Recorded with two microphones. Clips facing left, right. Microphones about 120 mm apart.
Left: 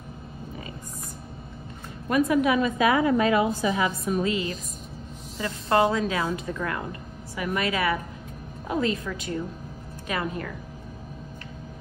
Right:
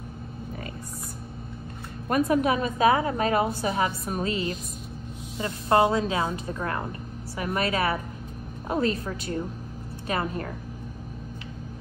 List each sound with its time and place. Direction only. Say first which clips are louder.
2.0 s a woman's voice: left 1 dB; 40° right (ahead or behind)